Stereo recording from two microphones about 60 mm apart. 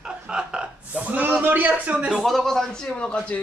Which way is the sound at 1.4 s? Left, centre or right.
Right.